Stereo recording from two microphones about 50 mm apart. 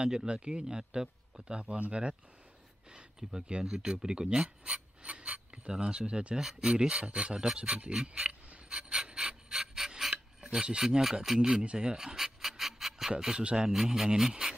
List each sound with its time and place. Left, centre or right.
0.0 s a man's voice: centre
8.0 s mechanisms: centre
8.6 s pant: centre
13.2 s speech: centre
13.7 s speech: centre